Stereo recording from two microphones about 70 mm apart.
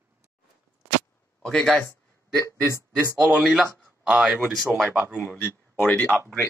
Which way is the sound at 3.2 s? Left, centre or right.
Centre.